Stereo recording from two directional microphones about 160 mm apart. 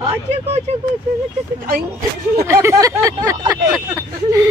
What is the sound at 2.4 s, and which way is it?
Speech, 15° right (ahead or behind).